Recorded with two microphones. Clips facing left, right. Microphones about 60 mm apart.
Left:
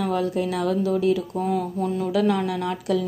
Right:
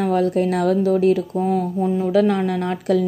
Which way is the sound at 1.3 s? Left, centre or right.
Right.